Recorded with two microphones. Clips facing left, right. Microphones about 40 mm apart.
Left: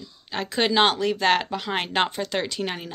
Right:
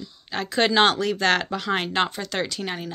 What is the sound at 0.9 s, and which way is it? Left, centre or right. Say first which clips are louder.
Speech: even; centre.